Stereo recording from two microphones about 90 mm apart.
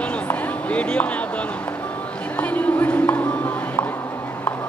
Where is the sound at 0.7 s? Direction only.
15° left (ahead or behind).